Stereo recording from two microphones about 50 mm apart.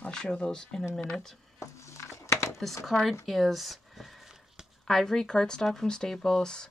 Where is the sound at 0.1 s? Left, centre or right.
Centre.